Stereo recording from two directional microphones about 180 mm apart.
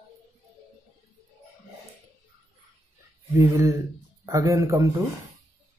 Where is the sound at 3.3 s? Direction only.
15° right (ahead or behind).